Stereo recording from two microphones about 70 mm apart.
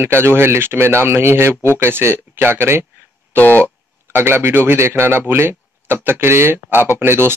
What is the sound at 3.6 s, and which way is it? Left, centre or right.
Speech, right.